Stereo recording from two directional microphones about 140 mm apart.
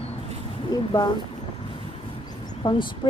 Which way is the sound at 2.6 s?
35° left (ahead or behind).